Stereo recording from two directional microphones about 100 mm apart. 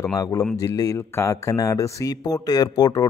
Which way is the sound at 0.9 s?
25° left (ahead or behind).